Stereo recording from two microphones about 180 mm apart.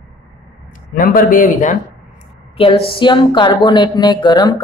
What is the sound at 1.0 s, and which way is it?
Speech, 50° left (ahead or behind).